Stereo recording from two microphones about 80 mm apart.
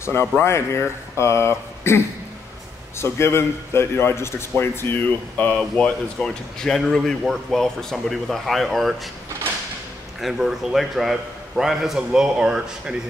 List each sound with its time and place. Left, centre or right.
0.0 s a man's voice: left; by 5.9 s centre
6.1 s speech: centre
10.2 s speech: centre